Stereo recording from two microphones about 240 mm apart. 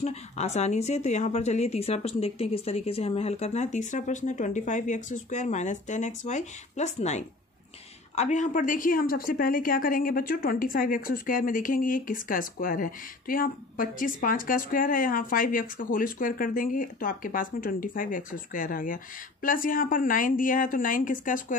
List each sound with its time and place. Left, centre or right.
0.0 s a woman's voice: left